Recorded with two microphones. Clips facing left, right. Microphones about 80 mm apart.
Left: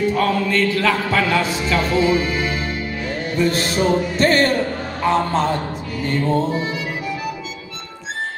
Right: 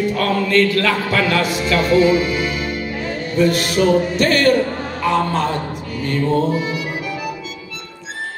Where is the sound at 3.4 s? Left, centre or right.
Left.